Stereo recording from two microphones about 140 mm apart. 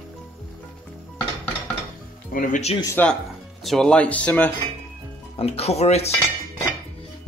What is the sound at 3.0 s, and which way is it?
Speech, 15° left (ahead or behind).